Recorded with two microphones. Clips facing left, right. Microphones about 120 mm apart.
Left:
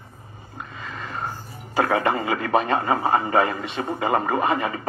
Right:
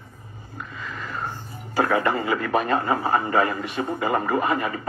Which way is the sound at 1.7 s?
25° left (ahead or behind).